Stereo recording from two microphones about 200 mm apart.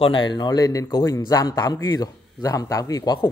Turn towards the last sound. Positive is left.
turn(degrees=20)  # may be behind; listen again after turning